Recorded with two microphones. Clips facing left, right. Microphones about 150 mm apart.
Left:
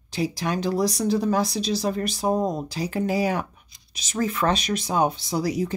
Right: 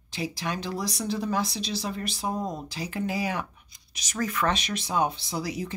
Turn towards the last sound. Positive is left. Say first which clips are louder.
# left 7 dB
turn(degrees=40)  # may be behind; listen again after turning